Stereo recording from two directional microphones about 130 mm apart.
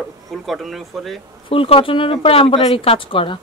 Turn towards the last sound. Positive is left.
turn(degrees=40)  # may be behind; listen again after turning